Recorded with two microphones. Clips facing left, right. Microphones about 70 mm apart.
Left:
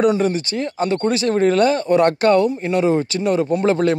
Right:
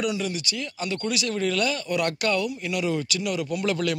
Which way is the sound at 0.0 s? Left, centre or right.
Left.